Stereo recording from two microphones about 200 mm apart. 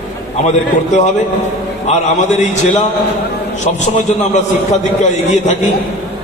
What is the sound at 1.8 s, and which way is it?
A man's voice, 35° left (ahead or behind).